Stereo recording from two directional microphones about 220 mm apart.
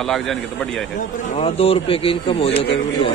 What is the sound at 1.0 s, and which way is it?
A man's voice, 25° left (ahead or behind).